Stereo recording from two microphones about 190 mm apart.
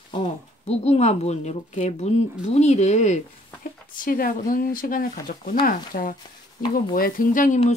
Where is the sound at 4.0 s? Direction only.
45° left (ahead or behind).